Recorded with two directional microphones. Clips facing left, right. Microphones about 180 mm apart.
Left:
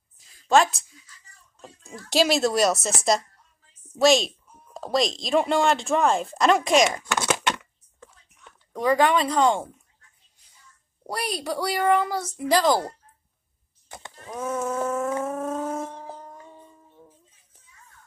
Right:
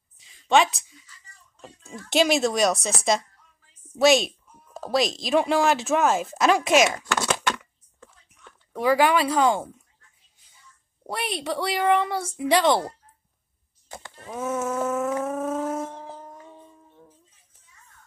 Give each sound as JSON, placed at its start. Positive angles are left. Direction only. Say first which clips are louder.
{"t": 0.2, "sound": "a sound", "louder": "left 1 dB", "side_deg": 0}
{"t": 1.6, "sound": "a woman's voice", "louder": "right 1 dB", "side_deg": 0}
{"t": 7.1, "sound": "a sound", "louder": "even", "side_deg": 20}
{"t": 8.7, "sound": "speech", "louder": "even", "side_deg": -5}
{"t": 11.1, "sound": "speech", "louder": "even", "side_deg": 0}
{"t": 14.1, "sound": "dog", "louder": "right 1 dB", "side_deg": -5}